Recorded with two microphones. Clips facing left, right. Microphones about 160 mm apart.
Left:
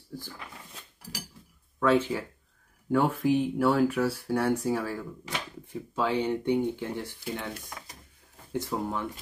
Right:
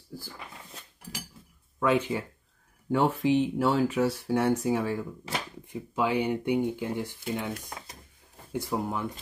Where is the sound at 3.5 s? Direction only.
20° right (ahead or behind).